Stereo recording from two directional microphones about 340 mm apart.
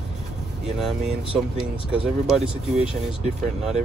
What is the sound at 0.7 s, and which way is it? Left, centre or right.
Speech, centre.